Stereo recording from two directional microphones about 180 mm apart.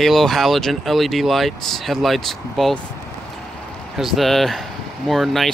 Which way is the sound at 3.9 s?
Centre (ahead or behind).